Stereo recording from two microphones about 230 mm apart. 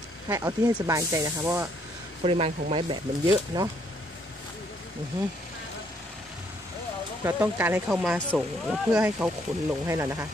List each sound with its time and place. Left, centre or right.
0.3 s speech: centre
2.2 s speech: right
7.2 s speech: centre